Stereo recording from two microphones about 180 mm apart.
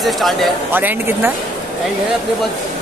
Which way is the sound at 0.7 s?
10° right (ahead or behind).